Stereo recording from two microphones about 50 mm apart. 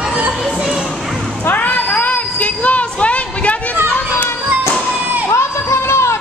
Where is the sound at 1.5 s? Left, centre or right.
Left.